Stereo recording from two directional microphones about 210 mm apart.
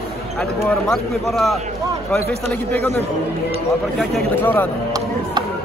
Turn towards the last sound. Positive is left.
turn(degrees=10)  # may be behind; listen again after turning